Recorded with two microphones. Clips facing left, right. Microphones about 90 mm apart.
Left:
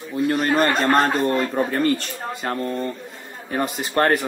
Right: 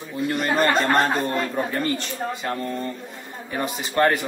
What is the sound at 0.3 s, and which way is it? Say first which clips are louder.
Speech: left 2 dB; 40° left (ahead or behind).